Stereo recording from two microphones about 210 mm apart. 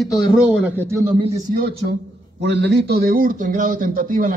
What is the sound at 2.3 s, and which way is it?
A man's voice, 55° right (ahead or behind).